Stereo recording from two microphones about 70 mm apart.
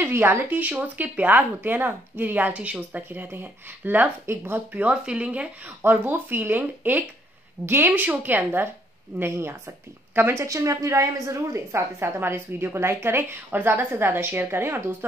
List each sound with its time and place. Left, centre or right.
0.0 s speech: right
4.7 s speech: centre
5.8 s a woman's voice: right